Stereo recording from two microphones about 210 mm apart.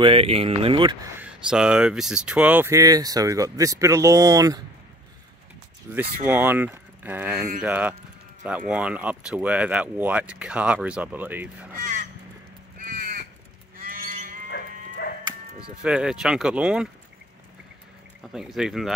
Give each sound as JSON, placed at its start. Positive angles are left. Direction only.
{"t": 0.0, "sound": "speech", "side_deg": -25}
{"t": 1.1, "sound": "speech", "side_deg": -5}
{"t": 5.9, "sound": "speech", "side_deg": -10}
{"t": 11.8, "sound": "crow", "side_deg": -40}
{"t": 13.7, "sound": "cattle", "side_deg": -40}
{"t": 15.8, "sound": "speech", "side_deg": -5}
{"t": 18.2, "sound": "speech", "side_deg": 0}